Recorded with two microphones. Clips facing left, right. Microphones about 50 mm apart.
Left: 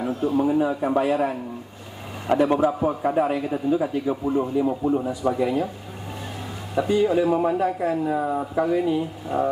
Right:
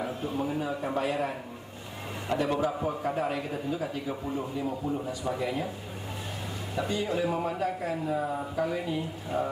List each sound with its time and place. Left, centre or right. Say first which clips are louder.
0.2 s a man's voice: left 14 dB; centre
2.3 s a man's voice: left 9 dB; left
2.6 s a man's voice: left 8 dB; centre
5.3 s speech: left 7 dB; centre
6.7 s a man's voice: left 10 dB; centre
8.6 s speech: left 9 dB; centre